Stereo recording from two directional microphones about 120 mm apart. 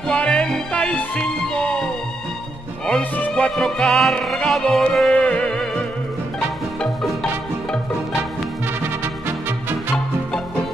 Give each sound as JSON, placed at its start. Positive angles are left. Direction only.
{"t": 0.1, "sound": "music", "side_deg": 10}
{"t": 2.9, "sound": "music", "side_deg": 10}
{"t": 6.8, "sound": "music", "side_deg": 0}